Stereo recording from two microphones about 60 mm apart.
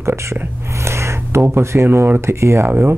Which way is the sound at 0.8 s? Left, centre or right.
Right.